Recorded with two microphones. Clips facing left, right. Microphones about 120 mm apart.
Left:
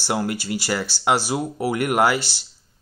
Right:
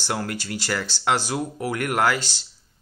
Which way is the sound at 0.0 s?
10° left (ahead or behind).